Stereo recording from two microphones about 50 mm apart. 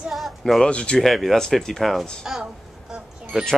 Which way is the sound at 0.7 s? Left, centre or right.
Left.